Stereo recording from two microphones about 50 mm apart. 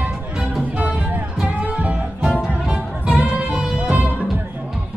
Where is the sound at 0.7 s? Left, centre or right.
Right.